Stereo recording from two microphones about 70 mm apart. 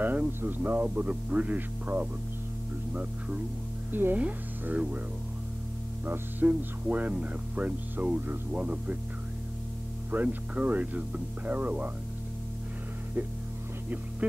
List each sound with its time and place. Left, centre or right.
0.0 s speech: right
6.0 s speech: right
10.1 s speech: right